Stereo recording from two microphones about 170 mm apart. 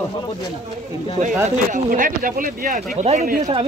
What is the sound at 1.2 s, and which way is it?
Speech, 50° right (ahead or behind).